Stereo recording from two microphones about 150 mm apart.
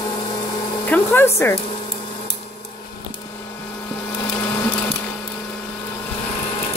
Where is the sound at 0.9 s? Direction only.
15° left (ahead or behind).